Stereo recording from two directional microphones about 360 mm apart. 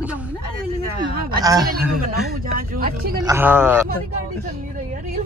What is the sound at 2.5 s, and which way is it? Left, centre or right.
Speech, right.